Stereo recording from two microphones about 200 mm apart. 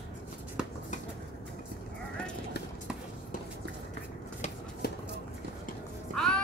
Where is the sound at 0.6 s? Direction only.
5° right (ahead or behind).